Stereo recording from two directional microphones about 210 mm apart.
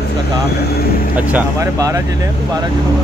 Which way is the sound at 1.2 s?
10° right (ahead or behind).